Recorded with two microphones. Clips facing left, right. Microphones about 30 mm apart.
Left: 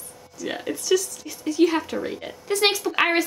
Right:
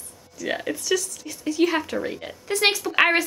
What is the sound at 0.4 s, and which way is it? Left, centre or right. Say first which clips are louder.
A woman's voice: right 2 dB; centre.